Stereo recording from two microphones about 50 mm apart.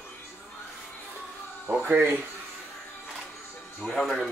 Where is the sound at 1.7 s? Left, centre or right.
Right.